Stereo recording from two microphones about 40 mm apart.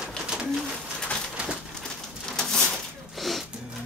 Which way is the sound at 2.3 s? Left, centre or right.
Centre.